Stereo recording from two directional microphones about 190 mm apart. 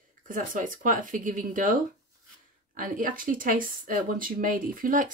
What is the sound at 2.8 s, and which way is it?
Speech, 45° right (ahead or behind).